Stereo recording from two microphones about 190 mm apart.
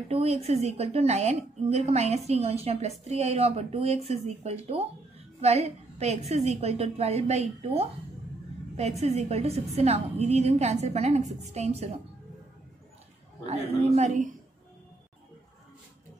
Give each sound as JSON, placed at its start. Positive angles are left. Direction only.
{"t": 0.1, "sound": "a woman's voice", "side_deg": -30}
{"t": 9.0, "sound": "a woman's voice", "side_deg": -35}
{"t": 13.5, "sound": "a woman's voice", "side_deg": -35}